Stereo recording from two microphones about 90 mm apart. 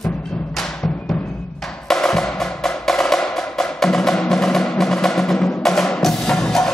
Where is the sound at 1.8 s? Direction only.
5° left (ahead or behind).